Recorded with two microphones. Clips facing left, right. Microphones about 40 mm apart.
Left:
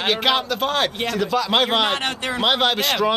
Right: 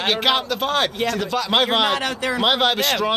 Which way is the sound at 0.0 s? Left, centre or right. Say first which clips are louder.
Even; centre.